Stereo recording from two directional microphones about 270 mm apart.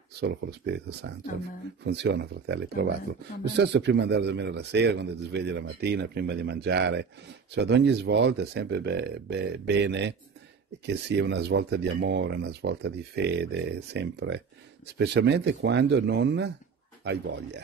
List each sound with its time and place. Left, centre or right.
0.2 s a man's voice: right